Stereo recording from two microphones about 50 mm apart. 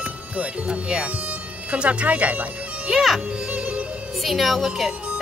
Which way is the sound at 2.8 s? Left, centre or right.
Centre.